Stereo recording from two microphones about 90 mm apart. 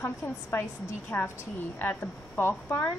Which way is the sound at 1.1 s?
30° left (ahead or behind).